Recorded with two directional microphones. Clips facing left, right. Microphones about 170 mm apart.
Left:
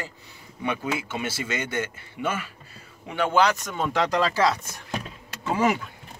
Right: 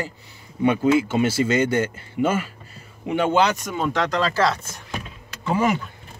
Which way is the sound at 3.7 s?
5° left (ahead or behind).